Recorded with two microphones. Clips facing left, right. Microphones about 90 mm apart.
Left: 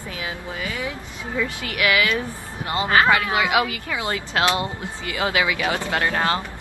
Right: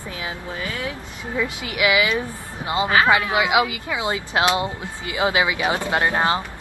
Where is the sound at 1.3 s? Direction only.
20° right (ahead or behind).